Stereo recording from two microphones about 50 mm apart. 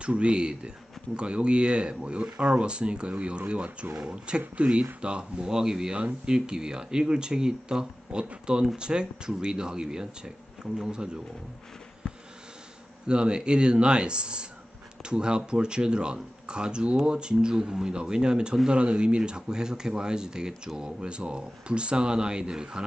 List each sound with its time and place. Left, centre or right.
0.0 s speech: right
13.0 s speech: centre